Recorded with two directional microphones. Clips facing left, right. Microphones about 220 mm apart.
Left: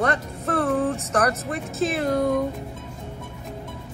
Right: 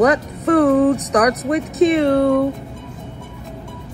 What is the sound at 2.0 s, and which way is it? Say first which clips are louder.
Speech: right 7 dB; 75° right (ahead or behind).